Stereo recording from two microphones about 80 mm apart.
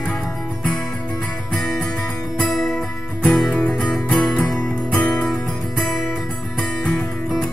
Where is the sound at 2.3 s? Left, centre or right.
Centre.